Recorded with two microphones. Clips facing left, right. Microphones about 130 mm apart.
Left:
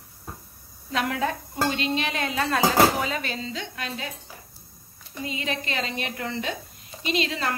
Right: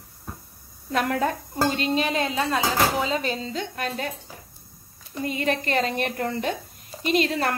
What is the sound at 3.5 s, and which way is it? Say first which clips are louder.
Speech: right 5 dB; 50° right (ahead or behind).